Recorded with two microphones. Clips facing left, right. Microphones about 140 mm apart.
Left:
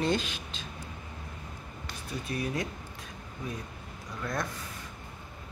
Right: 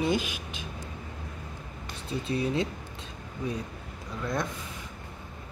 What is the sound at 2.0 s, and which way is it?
Speech, 25° right (ahead or behind).